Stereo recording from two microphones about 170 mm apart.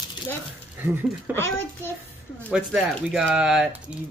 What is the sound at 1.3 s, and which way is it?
Speech, 15° left (ahead or behind).